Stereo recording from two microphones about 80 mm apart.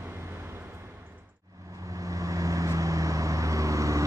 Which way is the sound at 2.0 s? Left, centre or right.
Right.